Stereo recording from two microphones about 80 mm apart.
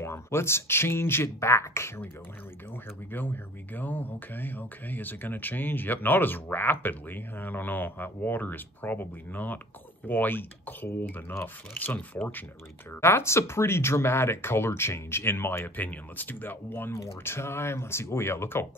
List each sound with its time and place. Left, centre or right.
0.0 s speech: left
3.1 s speech: left
13.0 s speech: left